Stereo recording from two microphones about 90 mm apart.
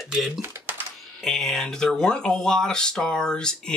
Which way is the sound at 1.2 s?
5° left (ahead or behind).